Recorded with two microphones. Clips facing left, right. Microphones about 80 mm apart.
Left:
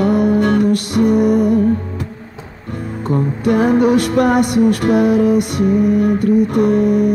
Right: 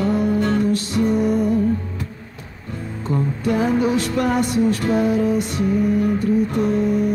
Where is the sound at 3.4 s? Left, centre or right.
Left.